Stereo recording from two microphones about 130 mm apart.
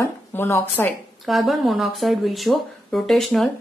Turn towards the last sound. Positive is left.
turn(degrees=0)  # may be behind; listen again after turning